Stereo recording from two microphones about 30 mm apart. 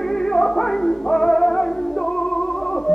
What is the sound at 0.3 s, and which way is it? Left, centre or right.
Music, centre.